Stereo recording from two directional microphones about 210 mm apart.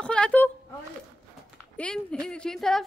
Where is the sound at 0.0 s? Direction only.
5° left (ahead or behind).